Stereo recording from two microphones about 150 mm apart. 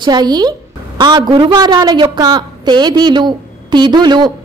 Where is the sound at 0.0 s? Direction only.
30° right (ahead or behind).